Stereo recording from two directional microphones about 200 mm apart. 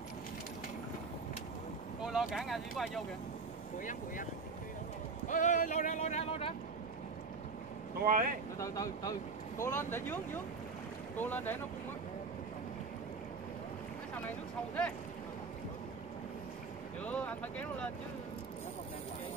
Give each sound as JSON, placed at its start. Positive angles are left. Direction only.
{"t": 2.0, "sound": "speech", "side_deg": -5}
{"t": 5.3, "sound": "speech", "side_deg": 40}
{"t": 8.0, "sound": "speech", "side_deg": -45}
{"t": 8.5, "sound": "speech", "side_deg": 15}
{"t": 17.0, "sound": "speech", "side_deg": 5}